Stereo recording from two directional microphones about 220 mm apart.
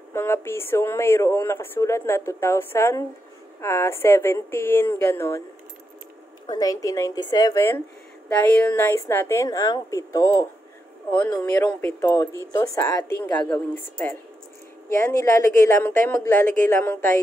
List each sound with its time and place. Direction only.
0.1 s speech: 10° left (ahead or behind)
6.4 s speech: 20° left (ahead or behind)